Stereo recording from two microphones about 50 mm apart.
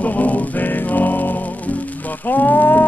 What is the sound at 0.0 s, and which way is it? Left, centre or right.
Music, left.